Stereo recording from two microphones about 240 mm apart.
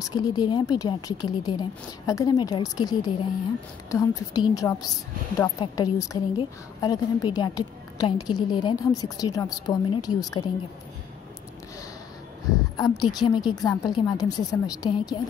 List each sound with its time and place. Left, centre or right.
0.0 s a woman's voice: centre
12.7 s a woman's voice: centre